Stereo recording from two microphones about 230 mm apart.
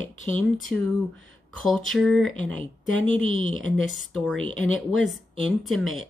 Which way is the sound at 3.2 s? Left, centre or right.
Left.